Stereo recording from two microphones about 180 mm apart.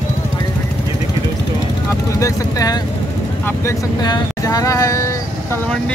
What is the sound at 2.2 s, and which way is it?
Vehicle, 20° left (ahead or behind).